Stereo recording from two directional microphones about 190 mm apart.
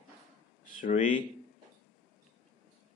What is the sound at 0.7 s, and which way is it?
Speech, 40° left (ahead or behind).